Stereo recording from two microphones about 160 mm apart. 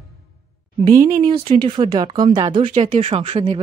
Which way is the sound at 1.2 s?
35° right (ahead or behind).